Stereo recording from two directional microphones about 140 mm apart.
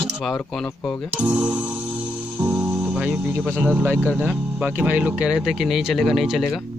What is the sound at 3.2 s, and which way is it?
Speech, 10° right (ahead or behind).